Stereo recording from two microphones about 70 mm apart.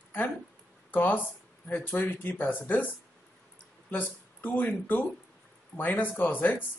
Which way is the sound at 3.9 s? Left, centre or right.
Left.